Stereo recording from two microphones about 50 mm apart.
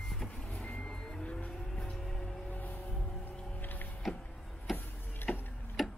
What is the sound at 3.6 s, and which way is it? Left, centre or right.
Music, left.